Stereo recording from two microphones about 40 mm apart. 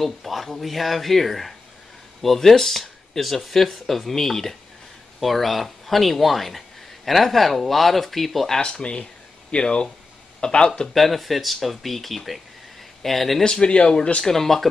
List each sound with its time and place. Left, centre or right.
0.0 s speech: centre
8.5 s speech: left
10.9 s speech: centre
13.4 s speech: left
14.2 s speech: centre